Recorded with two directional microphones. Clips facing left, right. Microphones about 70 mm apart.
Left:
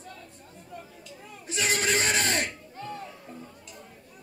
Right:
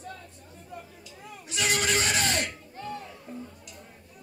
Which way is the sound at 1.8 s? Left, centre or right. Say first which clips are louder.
Left 2 dB; left.